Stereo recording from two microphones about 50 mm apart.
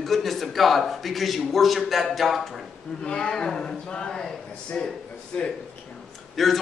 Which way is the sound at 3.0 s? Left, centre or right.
Centre.